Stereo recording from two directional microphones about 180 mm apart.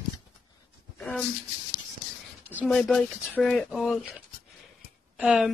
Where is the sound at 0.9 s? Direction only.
Centre (ahead or behind).